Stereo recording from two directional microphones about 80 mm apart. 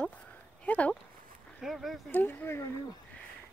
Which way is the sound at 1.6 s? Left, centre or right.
Centre.